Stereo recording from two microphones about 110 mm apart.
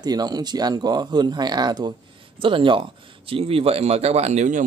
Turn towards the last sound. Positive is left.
turn(degrees=-80)